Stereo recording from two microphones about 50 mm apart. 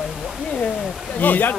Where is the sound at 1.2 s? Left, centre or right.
Left.